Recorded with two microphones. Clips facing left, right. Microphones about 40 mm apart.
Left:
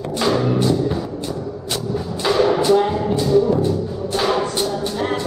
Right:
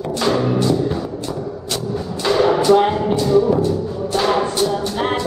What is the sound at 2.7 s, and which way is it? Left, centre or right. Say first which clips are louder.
Music: right 2 dB; right.